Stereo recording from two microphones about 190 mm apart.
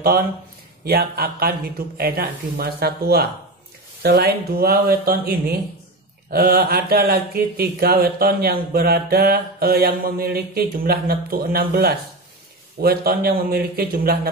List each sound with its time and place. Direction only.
0.8 s speech: 55° right (ahead or behind)